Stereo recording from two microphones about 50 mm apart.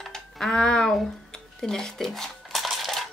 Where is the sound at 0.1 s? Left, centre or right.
Centre.